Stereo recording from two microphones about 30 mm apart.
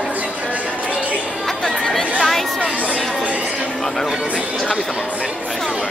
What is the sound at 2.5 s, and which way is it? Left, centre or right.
Chatter, right.